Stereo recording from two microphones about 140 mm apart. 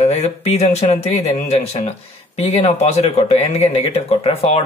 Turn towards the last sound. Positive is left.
turn(degrees=45)  # may be behind; listen again after turning